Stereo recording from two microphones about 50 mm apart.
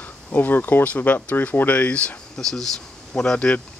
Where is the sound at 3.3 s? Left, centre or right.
Left.